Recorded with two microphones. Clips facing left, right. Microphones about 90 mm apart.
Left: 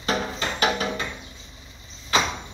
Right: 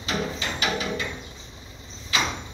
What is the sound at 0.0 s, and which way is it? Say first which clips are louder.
Music: left 2 dB; 45° left (ahead or behind).